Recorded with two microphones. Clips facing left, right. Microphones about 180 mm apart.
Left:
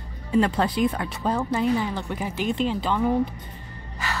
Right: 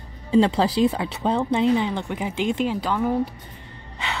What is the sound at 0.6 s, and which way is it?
Speech, 25° right (ahead or behind).